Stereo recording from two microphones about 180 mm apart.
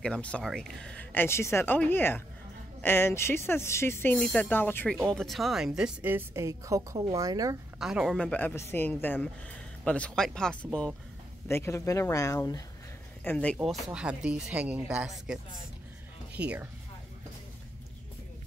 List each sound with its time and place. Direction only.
0.0 s speech: 5° left (ahead or behind); by 7.5 s 20° right (ahead or behind)
7.8 s speech: 5° right (ahead or behind)
11.4 s speech: 15° left (ahead or behind)
13.2 s speech: 10° left (ahead or behind)
13.8 s speech: 5° right (ahead or behind)